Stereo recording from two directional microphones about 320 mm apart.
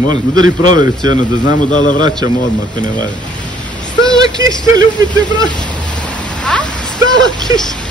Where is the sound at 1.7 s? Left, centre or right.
Left.